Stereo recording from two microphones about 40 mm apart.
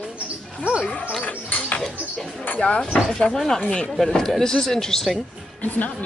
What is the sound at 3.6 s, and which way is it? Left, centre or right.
Speech, left.